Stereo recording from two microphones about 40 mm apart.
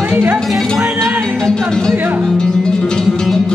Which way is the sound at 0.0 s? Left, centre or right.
Right.